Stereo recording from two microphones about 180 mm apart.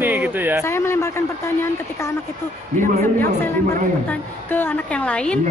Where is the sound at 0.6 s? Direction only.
15° left (ahead or behind).